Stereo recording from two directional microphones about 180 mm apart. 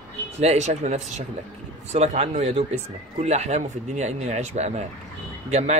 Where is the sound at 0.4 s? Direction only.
40° right (ahead or behind).